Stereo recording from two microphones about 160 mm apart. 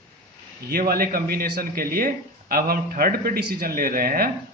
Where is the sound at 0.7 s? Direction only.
65° right (ahead or behind).